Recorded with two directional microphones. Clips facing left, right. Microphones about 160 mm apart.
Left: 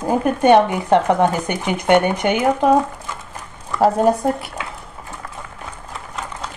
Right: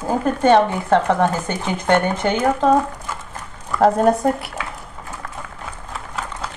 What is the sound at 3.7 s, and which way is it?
Speech, centre (ahead or behind).